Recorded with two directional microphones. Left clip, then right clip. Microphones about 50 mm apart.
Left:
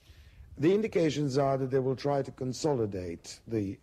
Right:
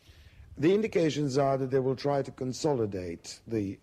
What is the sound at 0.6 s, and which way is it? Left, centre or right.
A man's voice, right.